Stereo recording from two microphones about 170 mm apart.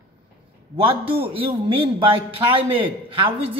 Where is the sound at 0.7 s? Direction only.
35° right (ahead or behind).